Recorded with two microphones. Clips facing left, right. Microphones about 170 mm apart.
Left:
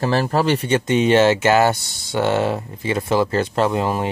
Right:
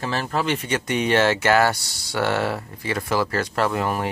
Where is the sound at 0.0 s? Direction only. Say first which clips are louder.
Left 6 dB; 35° left (ahead or behind).